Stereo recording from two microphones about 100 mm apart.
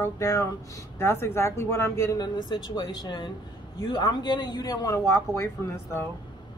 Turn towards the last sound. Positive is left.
turn(degrees=30)  # may be behind; listen again after turning